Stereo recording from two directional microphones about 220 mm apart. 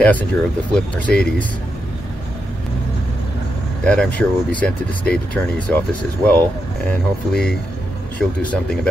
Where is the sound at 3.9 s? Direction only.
5° left (ahead or behind).